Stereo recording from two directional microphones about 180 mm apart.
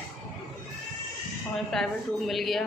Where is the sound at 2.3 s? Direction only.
Centre (ahead or behind).